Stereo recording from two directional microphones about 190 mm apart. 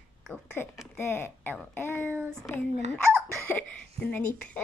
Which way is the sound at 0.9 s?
10° left (ahead or behind).